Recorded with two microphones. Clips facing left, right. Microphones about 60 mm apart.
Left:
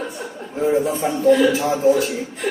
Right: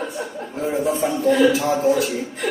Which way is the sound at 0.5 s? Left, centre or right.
Left.